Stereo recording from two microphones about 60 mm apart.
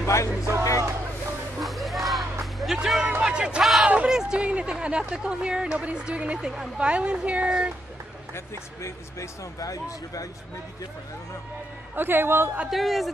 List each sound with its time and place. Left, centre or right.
0.0 s music: left
1.6 s music: centre
2.6 s speech: centre; by 4.1 s right
4.1 s speech: centre
9.6 s speech: left
11.9 s a man's voice: right
12.6 s speech: centre